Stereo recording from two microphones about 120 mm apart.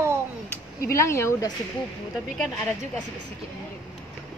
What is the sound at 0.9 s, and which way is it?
Speech, 25° left (ahead or behind).